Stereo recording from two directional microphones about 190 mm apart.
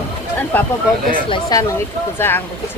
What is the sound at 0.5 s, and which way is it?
Speech, 10° left (ahead or behind).